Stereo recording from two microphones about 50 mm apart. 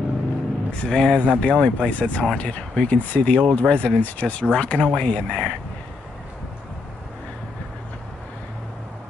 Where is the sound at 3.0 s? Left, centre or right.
Left; by 5.5 s centre.